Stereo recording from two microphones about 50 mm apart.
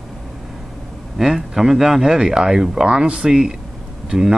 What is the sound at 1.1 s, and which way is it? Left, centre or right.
Speech, centre.